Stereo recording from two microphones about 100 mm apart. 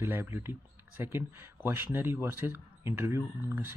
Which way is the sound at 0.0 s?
20° right (ahead or behind).